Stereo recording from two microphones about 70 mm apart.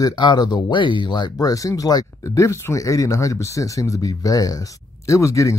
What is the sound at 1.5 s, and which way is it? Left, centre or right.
Speech, left.